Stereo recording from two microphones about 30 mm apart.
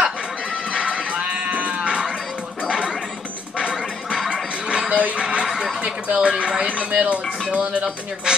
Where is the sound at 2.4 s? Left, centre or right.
Right.